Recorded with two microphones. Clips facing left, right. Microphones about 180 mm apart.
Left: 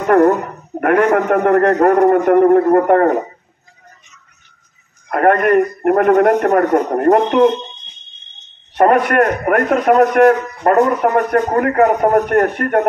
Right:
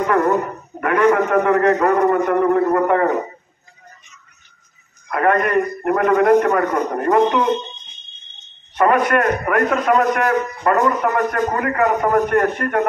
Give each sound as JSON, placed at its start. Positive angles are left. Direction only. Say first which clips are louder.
{"t": 0.0, "sound": "a man's voice", "louder": "left 5 dB", "side_deg": 60}
{"t": 5.1, "sound": "a man's voice", "louder": "left 5 dB", "side_deg": 60}
{"t": 8.7, "sound": "a man's voice", "louder": "left 4 dB", "side_deg": 55}
{"t": 10.8, "sound": "a man's voice", "louder": "left 5 dB", "side_deg": 45}